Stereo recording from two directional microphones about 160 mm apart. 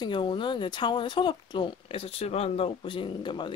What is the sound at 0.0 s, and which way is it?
Speech, 30° left (ahead or behind).